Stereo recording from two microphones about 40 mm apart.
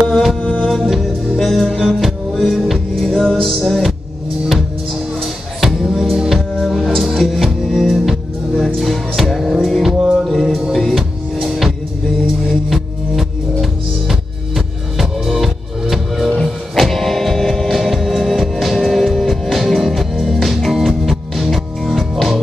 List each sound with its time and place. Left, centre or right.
0.1 s music: centre
0.4 s music: centre
0.8 s music: centre
3.1 s music: centre
5.6 s music: centre
8.6 s music: centre
12.7 s music: centre